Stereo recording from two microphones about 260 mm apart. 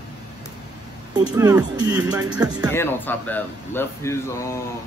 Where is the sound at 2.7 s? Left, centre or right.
Centre.